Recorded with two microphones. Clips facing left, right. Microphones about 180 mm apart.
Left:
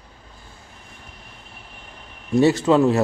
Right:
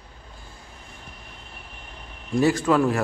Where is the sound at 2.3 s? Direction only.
25° left (ahead or behind).